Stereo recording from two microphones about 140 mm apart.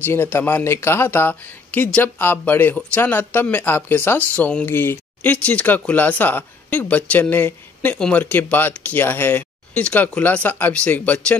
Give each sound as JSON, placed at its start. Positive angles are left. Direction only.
{"t": 0.0, "sound": "speech", "side_deg": 15}